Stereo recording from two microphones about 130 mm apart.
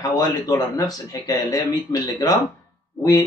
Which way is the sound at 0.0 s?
30° left (ahead or behind).